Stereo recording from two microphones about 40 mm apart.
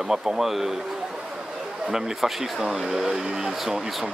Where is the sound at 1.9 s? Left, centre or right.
Centre.